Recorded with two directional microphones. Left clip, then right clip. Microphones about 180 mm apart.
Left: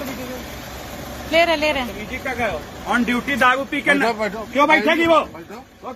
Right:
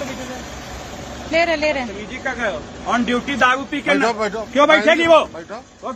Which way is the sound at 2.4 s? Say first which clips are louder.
Even; 15° right (ahead or behind).